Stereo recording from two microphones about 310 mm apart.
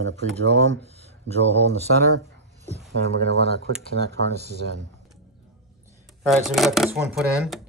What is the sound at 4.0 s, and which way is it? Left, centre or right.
Speech, right.